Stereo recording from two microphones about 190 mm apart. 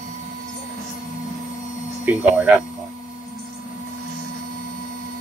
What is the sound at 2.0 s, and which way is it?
Speech, 10° right (ahead or behind).